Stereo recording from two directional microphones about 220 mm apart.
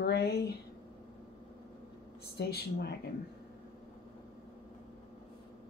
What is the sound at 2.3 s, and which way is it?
Speech, 50° left (ahead or behind).